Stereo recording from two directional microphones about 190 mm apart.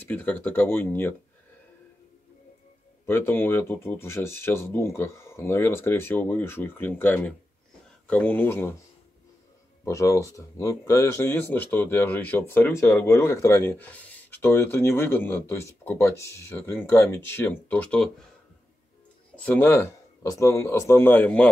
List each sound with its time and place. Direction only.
0.0 s speech: 10° left (ahead or behind)
3.1 s speech: 10° left (ahead or behind)
9.8 s speech: 15° left (ahead or behind)
19.3 s speech: 5° left (ahead or behind)